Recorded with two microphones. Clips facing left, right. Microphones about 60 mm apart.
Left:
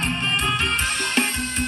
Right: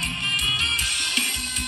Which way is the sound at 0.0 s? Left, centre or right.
Left.